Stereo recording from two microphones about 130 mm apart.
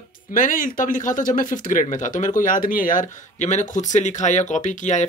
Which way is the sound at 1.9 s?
75° left (ahead or behind).